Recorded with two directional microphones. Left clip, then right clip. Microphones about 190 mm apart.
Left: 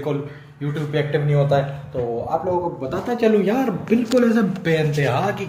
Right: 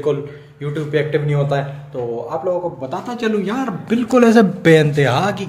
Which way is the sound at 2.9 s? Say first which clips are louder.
Left 4 dB; 10° right (ahead or behind).